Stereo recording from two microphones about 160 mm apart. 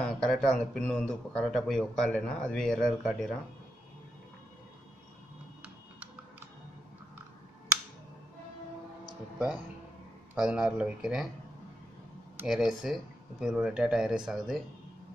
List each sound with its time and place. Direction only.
0.0 s speech: 5° left (ahead or behind)
10.3 s speech: 5° right (ahead or behind)
12.4 s speech: 5° right (ahead or behind)